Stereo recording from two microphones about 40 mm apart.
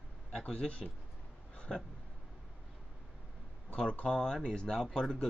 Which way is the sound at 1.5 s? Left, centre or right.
Left.